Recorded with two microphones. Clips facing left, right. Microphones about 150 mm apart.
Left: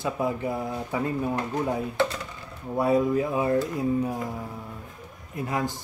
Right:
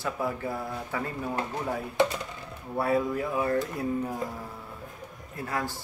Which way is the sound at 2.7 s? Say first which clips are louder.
Left 4 dB; 15° left (ahead or behind).